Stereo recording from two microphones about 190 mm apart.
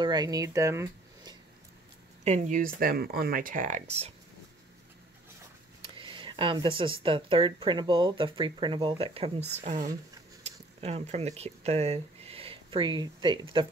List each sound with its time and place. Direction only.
0.0 s speech: 20° right (ahead or behind)
2.2 s speech: 40° right (ahead or behind)
5.9 s speech: 25° right (ahead or behind)